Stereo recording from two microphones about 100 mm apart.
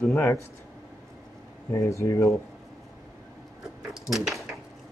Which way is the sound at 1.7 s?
30° left (ahead or behind).